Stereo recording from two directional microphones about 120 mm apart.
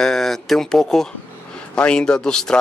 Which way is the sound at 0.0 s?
5° left (ahead or behind).